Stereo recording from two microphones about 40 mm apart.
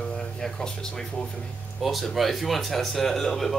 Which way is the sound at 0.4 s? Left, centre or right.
Centre.